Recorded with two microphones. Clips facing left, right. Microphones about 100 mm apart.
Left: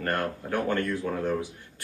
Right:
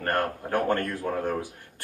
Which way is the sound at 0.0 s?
50° right (ahead or behind).